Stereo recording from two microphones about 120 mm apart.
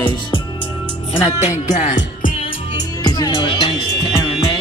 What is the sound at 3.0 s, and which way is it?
Speech, 35° left (ahead or behind).